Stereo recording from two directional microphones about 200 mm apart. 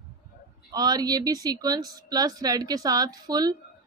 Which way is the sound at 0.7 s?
20° right (ahead or behind).